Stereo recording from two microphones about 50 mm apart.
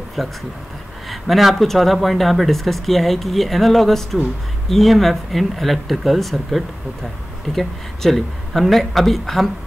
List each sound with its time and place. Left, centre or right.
0.2 s speech: centre